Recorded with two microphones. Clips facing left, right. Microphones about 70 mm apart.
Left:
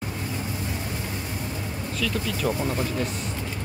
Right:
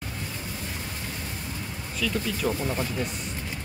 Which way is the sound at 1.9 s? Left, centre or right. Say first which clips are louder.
Even; centre.